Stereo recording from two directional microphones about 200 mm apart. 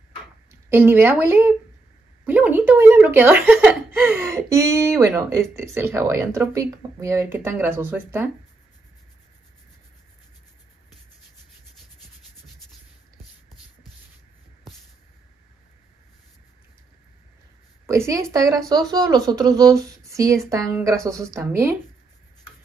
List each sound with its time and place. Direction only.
0.5 s speech: 10° right (ahead or behind)
17.8 s speech: 15° right (ahead or behind)